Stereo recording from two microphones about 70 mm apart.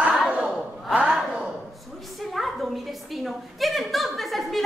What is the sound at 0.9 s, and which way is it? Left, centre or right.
Gasp, centre.